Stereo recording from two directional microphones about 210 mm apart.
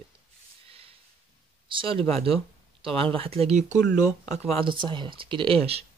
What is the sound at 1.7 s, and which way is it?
Speech, 25° right (ahead or behind).